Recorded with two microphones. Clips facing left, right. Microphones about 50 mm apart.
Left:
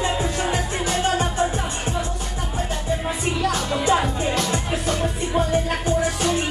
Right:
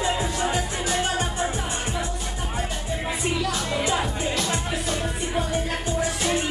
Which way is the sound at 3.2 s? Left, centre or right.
Left.